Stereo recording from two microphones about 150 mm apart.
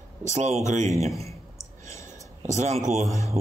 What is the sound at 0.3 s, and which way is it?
Speech, 50° right (ahead or behind).